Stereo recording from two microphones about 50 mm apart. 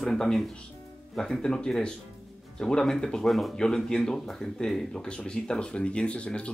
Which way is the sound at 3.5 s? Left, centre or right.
Centre.